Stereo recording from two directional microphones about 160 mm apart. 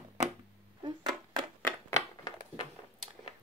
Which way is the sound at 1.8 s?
20° left (ahead or behind).